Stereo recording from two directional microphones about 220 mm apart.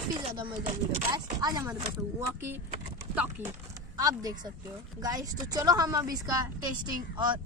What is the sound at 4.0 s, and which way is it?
Speech, 15° right (ahead or behind).